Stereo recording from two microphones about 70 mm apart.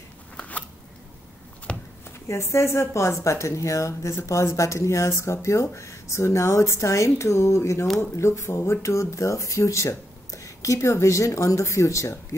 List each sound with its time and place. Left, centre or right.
0.4 s scissors: left
1.7 s a sound: centre
2.2 s speech: left